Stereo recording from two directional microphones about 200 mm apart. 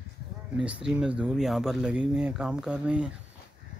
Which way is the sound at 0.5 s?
5° right (ahead or behind).